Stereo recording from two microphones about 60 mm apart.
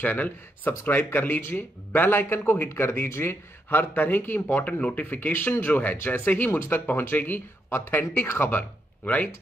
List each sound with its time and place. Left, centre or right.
0.0 s speech: left